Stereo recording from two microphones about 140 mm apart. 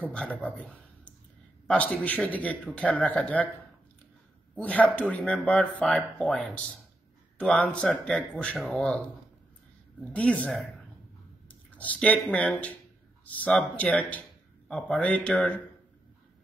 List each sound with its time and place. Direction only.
0.1 s speech: 10° left (ahead or behind)
4.6 s speech: 10° left (ahead or behind)
10.1 s speech: 10° left (ahead or behind)